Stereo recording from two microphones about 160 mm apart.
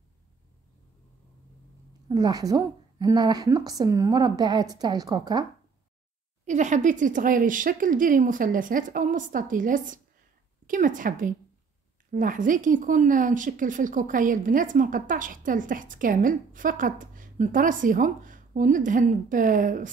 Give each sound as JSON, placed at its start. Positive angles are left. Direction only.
{"t": 2.0, "sound": "a woman's voice", "side_deg": -25}
{"t": 6.4, "sound": "speech", "side_deg": -50}